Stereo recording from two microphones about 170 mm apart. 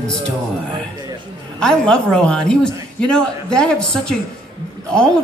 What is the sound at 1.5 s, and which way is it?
A man's voice, 5° left (ahead or behind).